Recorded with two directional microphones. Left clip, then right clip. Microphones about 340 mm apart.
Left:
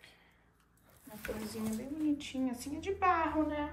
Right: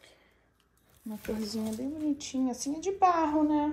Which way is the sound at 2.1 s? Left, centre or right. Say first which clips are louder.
Right 5 dB; centre.